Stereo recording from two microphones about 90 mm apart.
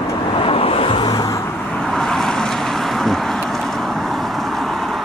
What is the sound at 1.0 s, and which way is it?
Vehicle, 45° left (ahead or behind).